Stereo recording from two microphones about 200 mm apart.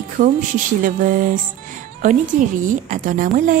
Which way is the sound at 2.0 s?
40° right (ahead or behind).